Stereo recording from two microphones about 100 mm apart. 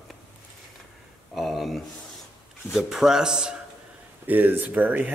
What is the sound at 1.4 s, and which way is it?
Speech, centre (ahead or behind).